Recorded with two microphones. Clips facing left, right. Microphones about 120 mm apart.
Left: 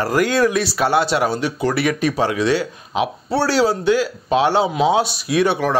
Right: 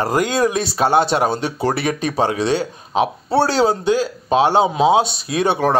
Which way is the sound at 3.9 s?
40° right (ahead or behind).